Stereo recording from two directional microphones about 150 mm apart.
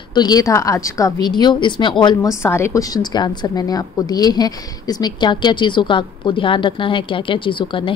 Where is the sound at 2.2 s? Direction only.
15° left (ahead or behind).